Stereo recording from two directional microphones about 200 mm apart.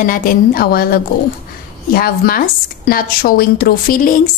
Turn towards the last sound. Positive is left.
turn(degrees=45)  # may be behind; listen again after turning